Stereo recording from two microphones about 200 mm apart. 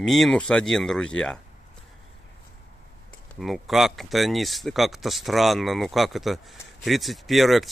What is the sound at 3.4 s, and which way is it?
Speech, centre (ahead or behind).